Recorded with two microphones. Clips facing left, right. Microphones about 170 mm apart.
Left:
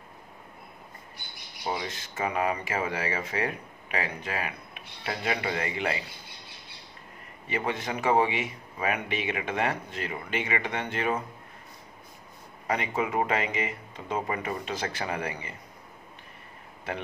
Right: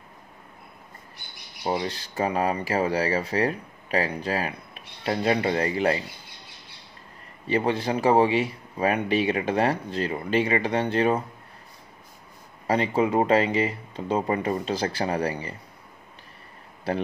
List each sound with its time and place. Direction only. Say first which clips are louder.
1.7 s speech: right 5 dB; 35° right (ahead or behind)
7.4 s speech: right 7 dB; 30° right (ahead or behind)
12.6 s speech: right 6 dB; 30° right (ahead or behind)
16.9 s speech: right 7 dB; 35° right (ahead or behind)